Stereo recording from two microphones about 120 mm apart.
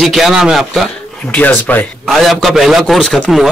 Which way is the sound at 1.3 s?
15° left (ahead or behind).